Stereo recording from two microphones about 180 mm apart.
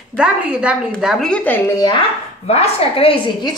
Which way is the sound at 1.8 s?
25° left (ahead or behind).